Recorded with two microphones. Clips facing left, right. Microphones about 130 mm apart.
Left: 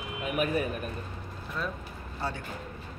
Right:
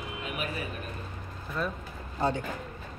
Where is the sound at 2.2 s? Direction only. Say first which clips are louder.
Right 7 dB; 20° right (ahead or behind).